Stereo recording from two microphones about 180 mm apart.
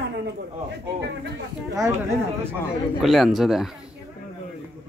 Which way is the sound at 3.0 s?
Centre (ahead or behind).